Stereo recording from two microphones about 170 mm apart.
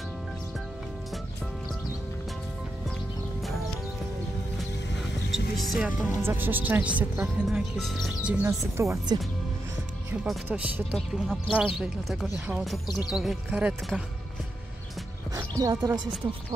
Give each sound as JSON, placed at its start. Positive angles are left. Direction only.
{"t": 5.3, "sound": "music", "side_deg": 0}
{"t": 6.2, "sound": "speech", "side_deg": -10}
{"t": 8.5, "sound": "speech", "side_deg": -15}
{"t": 10.2, "sound": "speech", "side_deg": -5}
{"t": 15.3, "sound": "speech", "side_deg": -20}